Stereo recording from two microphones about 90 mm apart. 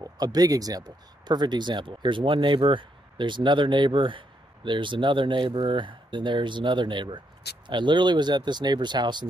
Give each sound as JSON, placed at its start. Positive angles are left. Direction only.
{"t": 0.0, "sound": "speech", "side_deg": -45}